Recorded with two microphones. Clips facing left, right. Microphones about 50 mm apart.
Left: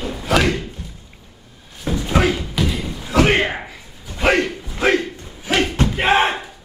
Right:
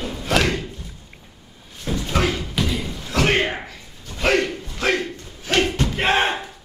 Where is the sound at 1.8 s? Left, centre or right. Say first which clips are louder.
Left 4 dB; centre.